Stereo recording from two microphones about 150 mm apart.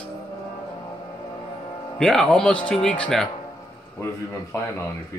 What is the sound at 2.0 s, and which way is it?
Speech, 5° left (ahead or behind).